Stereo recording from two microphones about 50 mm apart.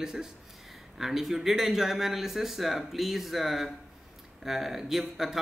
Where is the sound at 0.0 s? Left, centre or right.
Centre.